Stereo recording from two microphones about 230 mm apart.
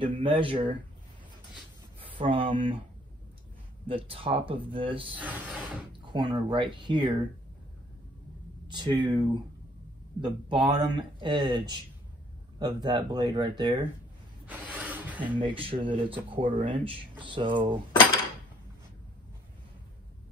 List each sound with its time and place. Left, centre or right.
0.0 s speech: right
2.0 s speech: right
3.8 s speech: right
5.1 s speech: centre
6.1 s speech: right
8.6 s speech: centre
14.4 s a sound: centre
15.3 s speech: right